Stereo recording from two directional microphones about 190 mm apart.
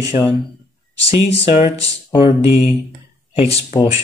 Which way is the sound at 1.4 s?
25° left (ahead or behind).